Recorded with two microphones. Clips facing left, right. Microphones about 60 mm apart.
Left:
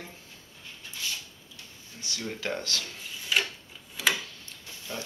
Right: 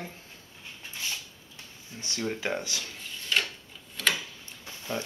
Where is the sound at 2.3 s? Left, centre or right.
Centre.